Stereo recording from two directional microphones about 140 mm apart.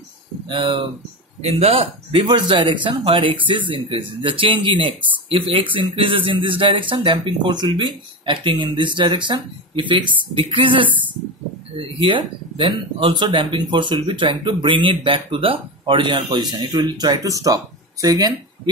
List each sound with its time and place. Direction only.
0.5 s speech: 35° right (ahead or behind)
1.4 s speech: 45° right (ahead or behind)
12.0 s speech: 35° right (ahead or behind)